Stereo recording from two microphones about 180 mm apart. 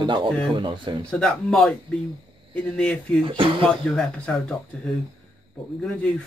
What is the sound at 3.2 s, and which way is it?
Speech, 30° right (ahead or behind).